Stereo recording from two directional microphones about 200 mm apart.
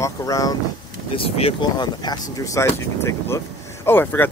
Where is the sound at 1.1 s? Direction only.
30° left (ahead or behind).